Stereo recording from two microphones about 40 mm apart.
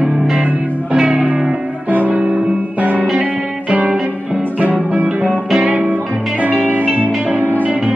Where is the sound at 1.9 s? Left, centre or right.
Right.